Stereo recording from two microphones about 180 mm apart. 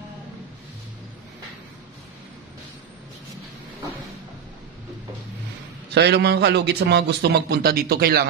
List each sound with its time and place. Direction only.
5.9 s a man's voice: 65° right (ahead or behind)